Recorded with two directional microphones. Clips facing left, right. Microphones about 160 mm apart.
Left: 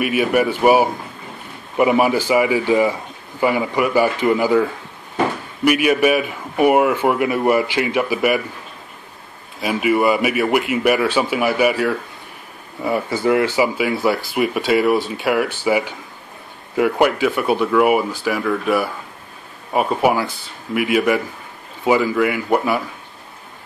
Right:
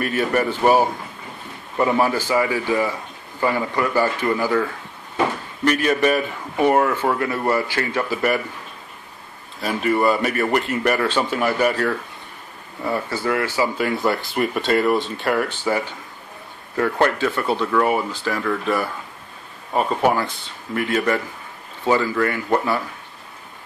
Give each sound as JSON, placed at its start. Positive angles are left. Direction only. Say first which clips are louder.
{"t": 0.0, "sound": "speech", "louder": "left 3 dB", "side_deg": 10}
{"t": 9.6, "sound": "speech", "louder": "left 3 dB", "side_deg": 10}
{"t": 13.7, "sound": "speech", "louder": "left 2 dB", "side_deg": 5}